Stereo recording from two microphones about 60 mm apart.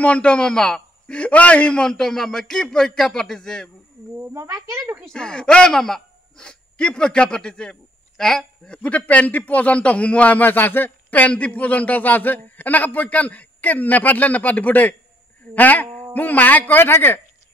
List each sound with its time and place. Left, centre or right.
0.0 s a man's voice: left
4.4 s a woman's voice: right
5.0 s speech: centre
6.4 s a man's voice: centre
8.8 s a man's voice: left